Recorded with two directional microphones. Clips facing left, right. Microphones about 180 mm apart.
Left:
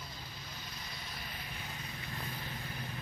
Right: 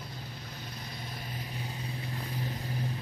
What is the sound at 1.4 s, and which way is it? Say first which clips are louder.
Vehicle: right 6 dB; 35° right (ahead or behind).